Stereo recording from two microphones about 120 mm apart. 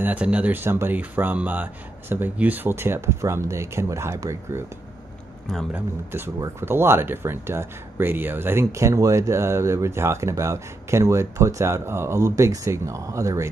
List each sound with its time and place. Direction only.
0.0 s speech: 10° right (ahead or behind)
5.7 s speech: 20° right (ahead or behind)